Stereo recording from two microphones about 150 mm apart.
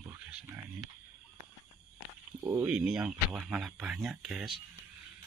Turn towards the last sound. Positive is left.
turn(degrees=0)  # may be behind; listen again after turning